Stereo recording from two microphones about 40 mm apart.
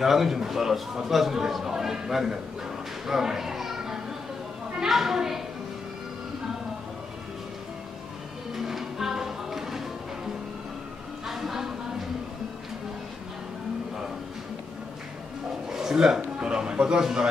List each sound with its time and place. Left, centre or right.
0.0 s a man's voice: centre
3.1 s children playing: centre
4.8 s a man's voice: centre
8.5 s music: centre
11.2 s a sound: centre
15.7 s a sound: centre
16.3 s a man's voice: right